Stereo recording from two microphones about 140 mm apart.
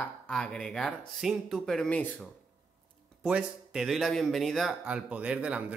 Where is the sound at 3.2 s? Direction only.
5° right (ahead or behind).